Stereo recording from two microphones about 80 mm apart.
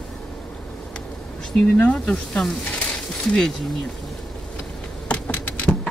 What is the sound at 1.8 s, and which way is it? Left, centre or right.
Speech, centre.